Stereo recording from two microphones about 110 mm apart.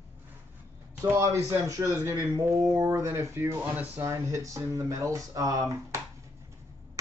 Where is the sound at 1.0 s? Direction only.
25° right (ahead or behind).